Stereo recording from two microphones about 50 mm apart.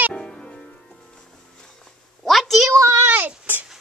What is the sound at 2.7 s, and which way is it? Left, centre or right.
Speech, right.